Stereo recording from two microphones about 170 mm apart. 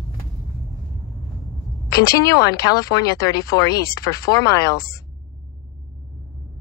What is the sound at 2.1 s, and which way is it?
Speech, 20° left (ahead or behind).